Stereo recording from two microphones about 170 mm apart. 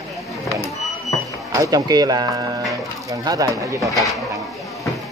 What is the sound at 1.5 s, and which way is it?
A woman's voice, 20° right (ahead or behind).